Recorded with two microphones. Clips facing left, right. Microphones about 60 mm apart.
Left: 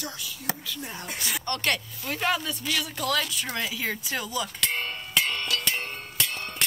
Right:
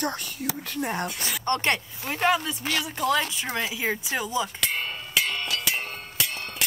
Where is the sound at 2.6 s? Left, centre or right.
Right.